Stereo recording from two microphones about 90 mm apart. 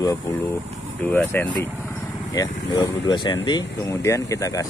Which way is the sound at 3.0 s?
65° left (ahead or behind).